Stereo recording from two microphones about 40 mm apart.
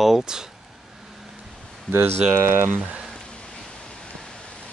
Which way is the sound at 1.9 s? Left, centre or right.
Right.